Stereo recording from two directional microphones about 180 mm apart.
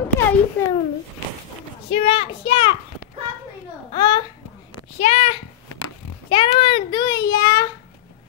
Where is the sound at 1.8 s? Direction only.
30° left (ahead or behind).